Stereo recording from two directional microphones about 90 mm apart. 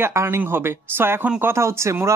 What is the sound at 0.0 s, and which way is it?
Speech, 30° right (ahead or behind).